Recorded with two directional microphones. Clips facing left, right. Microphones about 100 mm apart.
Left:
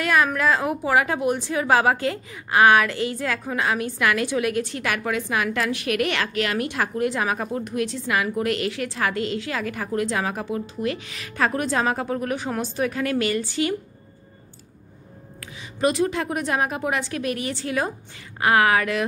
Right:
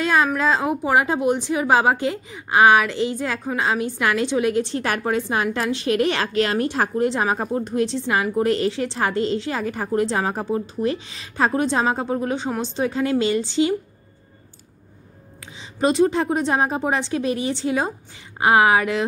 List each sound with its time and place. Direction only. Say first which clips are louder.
0.0 s a woman's voice: right 1 dB; 25° right (ahead or behind)
15.4 s a woman's voice: right 2 dB; 25° right (ahead or behind)